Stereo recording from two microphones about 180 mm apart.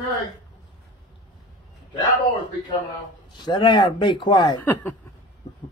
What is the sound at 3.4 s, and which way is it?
A man's voice, 25° left (ahead or behind).